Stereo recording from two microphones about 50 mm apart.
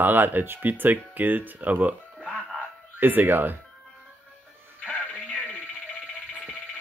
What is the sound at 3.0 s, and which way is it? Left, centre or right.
Speech, right.